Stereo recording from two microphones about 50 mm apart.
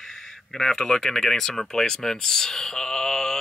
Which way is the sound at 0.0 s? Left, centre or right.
Centre.